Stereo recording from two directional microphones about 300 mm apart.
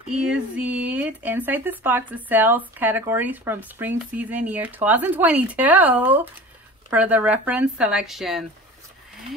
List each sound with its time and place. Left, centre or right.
0.3 s speech: centre